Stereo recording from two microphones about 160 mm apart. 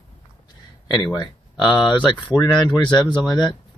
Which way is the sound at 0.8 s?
25° left (ahead or behind).